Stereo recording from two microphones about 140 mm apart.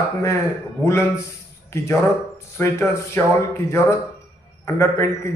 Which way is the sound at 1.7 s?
20° left (ahead or behind).